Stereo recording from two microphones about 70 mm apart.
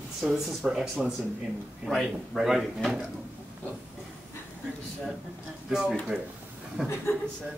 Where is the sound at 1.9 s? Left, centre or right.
Centre.